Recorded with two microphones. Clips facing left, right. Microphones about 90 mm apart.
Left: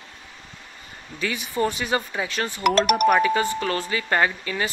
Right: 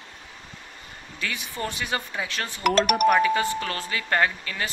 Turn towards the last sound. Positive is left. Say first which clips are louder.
# left 2 dB
turn(degrees=10)  # may be behind; listen again after turning